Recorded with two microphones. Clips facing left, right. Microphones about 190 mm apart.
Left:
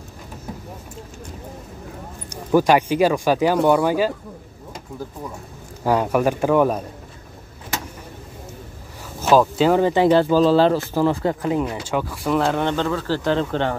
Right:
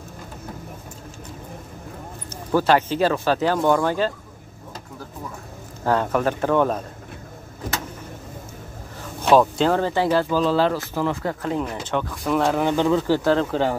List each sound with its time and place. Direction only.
2.2 s speech: 15° left (ahead or behind)
5.9 s speech: 10° left (ahead or behind)
9.2 s speech: 5° left (ahead or behind); by 10.2 s 20° left (ahead or behind)
10.3 s speech: 30° left (ahead or behind)
11.4 s speech: 10° left (ahead or behind)
12.7 s speech: 15° right (ahead or behind)
13.3 s speech: 5° right (ahead or behind)